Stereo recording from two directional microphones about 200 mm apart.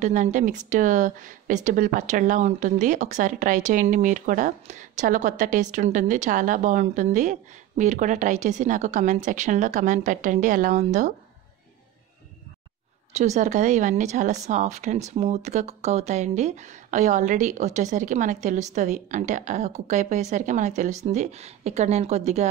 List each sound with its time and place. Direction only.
0.0 s speech: 40° right (ahead or behind)
13.1 s speech: 35° right (ahead or behind)